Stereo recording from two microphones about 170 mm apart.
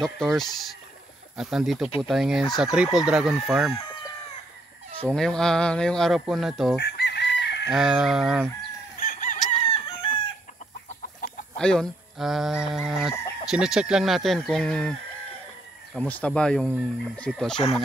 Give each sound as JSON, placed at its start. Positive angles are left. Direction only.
{"t": 0.0, "sound": "speech", "side_deg": 0}
{"t": 5.0, "sound": "speech", "side_deg": 5}
{"t": 6.8, "sound": "chicken", "side_deg": 80}
{"t": 7.7, "sound": "speech", "side_deg": 0}
{"t": 9.0, "sound": "chicken", "side_deg": 50}
{"t": 9.8, "sound": "chicken", "side_deg": 30}
{"t": 11.5, "sound": "speech", "side_deg": 5}